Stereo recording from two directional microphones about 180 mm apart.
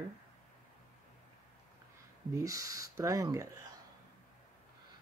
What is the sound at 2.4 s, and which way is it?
Speech, 20° right (ahead or behind).